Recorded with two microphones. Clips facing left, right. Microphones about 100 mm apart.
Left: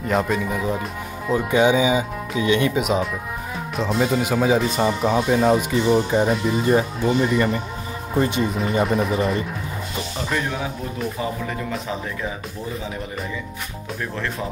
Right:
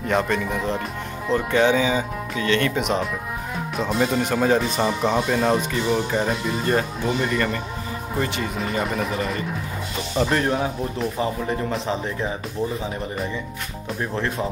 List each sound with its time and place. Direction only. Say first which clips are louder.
0.0 s speech: left 1 dB; centre (ahead or behind); by 8.5 s 20° left (ahead or behind)
8.8 s speech: left 4 dB; centre (ahead or behind)
10.3 s speech: right 1 dB; 35° right (ahead or behind)